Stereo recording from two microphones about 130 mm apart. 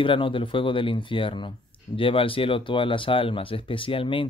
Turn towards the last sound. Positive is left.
turn(degrees=45)  # may be behind; listen again after turning